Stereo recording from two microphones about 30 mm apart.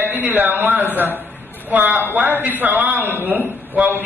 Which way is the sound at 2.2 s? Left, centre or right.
Right.